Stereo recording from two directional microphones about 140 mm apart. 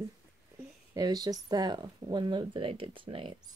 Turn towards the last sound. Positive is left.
turn(degrees=-40)  # may be behind; listen again after turning